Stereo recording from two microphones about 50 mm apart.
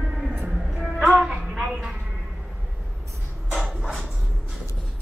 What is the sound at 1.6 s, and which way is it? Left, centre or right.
Speech, right.